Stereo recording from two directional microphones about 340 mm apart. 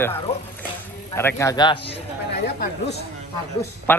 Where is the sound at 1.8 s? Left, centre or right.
Left.